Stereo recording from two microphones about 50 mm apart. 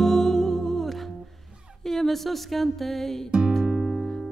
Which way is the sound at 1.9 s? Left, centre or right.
Centre.